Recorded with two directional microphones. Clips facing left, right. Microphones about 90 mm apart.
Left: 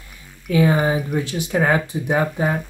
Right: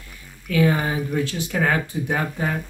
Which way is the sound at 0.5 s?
20° left (ahead or behind).